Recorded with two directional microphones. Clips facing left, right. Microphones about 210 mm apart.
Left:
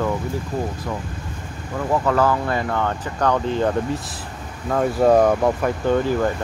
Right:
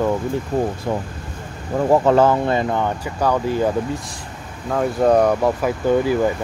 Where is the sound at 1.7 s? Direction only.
30° right (ahead or behind); by 6.3 s 10° right (ahead or behind).